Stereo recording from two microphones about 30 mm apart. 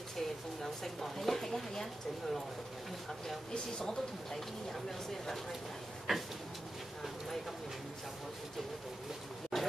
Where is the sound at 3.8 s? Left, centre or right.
Centre.